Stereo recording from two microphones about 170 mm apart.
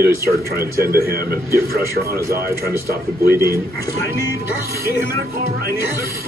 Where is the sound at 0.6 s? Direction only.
65° right (ahead or behind).